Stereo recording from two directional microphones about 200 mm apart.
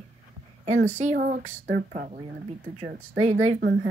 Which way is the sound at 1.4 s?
55° right (ahead or behind).